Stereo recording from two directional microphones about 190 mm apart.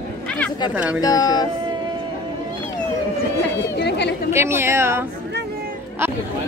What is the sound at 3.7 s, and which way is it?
Speech, 65° left (ahead or behind).